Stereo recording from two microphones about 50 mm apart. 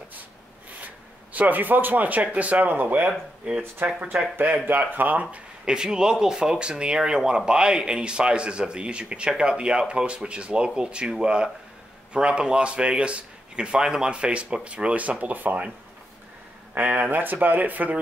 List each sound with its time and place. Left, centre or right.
1.3 s speech: right
3.1 s speech: centre
3.8 s speech: right
5.2 s speech: centre; by 15.5 s right
16.7 s speech: right